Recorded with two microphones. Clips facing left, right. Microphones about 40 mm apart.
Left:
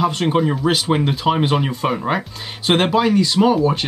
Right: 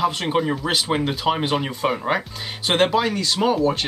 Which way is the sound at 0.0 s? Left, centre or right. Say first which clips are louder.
Left 3 dB; centre.